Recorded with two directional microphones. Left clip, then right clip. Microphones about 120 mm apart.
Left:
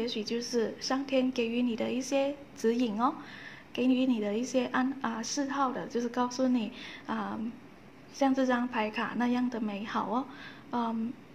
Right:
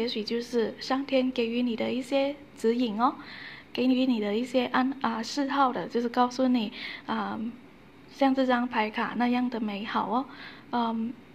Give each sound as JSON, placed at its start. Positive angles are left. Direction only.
{"t": 0.0, "sound": "a woman's voice", "side_deg": -15}